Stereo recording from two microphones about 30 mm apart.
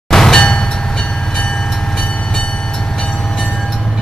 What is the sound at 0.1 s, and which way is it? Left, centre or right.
Train, centre.